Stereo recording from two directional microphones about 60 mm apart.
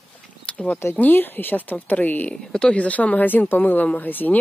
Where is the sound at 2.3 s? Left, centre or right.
Centre.